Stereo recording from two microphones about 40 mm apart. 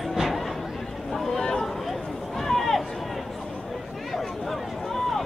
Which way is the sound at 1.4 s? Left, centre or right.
Centre.